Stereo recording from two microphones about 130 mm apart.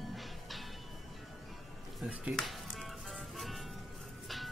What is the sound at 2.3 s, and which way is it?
Music, centre (ahead or behind).